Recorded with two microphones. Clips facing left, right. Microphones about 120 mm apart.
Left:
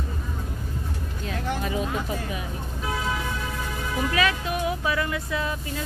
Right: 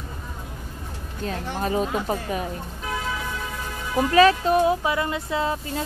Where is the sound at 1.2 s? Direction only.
40° right (ahead or behind).